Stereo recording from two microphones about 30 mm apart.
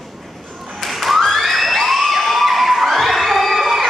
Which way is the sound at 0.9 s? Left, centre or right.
Centre.